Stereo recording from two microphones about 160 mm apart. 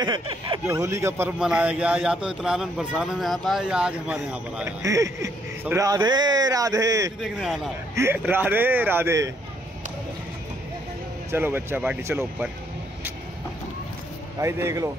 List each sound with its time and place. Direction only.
0.0 s speech: 30° right (ahead or behind)
0.7 s a man's voice: 20° right (ahead or behind)
4.8 s speech: 20° right (ahead or behind)
7.2 s a man's voice: centre (ahead or behind)
7.9 s speech: 15° right (ahead or behind)
11.3 s speech: 15° right (ahead or behind)
14.4 s speech: 20° right (ahead or behind)